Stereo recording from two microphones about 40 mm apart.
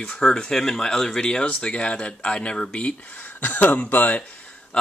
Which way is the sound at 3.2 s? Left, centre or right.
Left.